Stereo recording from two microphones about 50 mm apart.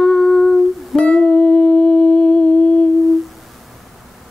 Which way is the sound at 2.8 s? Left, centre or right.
Centre.